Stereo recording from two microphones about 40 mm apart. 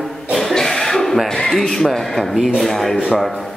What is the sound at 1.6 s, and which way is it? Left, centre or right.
A man's voice, centre.